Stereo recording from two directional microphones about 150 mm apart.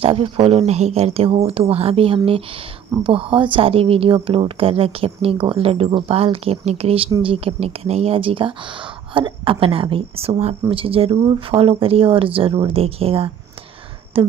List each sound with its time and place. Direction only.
0.0 s speech: 40° right (ahead or behind)